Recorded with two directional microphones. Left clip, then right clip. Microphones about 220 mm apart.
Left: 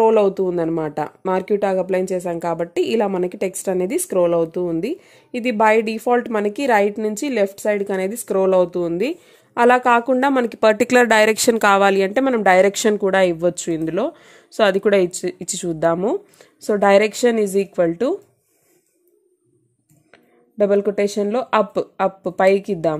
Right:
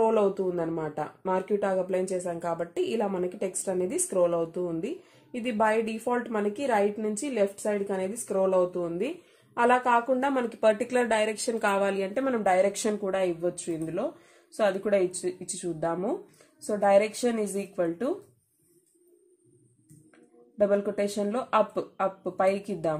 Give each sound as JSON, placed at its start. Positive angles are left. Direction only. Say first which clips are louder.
{"t": 0.0, "sound": "speech", "louder": "left 9 dB", "side_deg": 35}
{"t": 20.5, "sound": "speech", "louder": "left 8 dB", "side_deg": 35}